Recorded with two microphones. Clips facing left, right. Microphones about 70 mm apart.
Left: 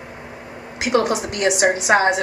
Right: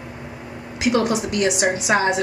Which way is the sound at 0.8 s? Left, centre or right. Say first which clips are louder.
Left 1 dB; left.